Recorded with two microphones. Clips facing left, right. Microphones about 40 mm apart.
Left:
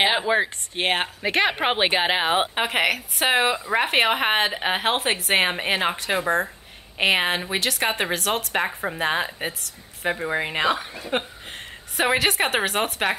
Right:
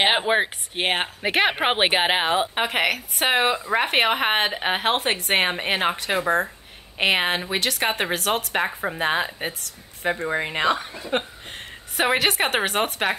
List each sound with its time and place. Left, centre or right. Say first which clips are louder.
0.0 s a sound: right 1 dB; right
0.7 s a woman's voice: even; centre
1.2 s speech: right 2 dB; centre
2.5 s a woman's voice: even; centre